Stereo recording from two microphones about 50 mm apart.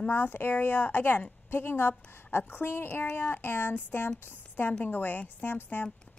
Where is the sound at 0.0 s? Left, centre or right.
Left.